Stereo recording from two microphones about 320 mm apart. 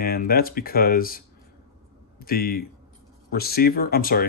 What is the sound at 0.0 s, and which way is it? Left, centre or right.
Speech, left.